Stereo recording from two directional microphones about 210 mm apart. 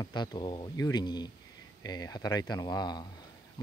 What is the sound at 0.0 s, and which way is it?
Speech, 20° left (ahead or behind).